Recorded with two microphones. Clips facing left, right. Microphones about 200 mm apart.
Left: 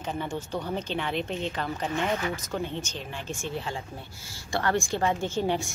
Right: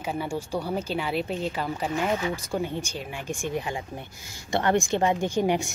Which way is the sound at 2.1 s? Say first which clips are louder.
Right 3 dB; 15° right (ahead or behind).